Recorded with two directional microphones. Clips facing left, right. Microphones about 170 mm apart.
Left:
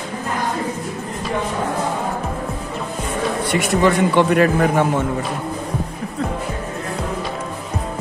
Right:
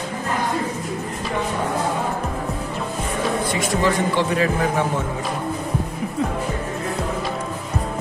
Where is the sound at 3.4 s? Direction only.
65° left (ahead or behind).